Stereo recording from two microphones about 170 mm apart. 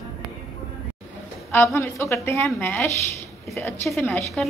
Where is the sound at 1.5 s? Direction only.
10° left (ahead or behind).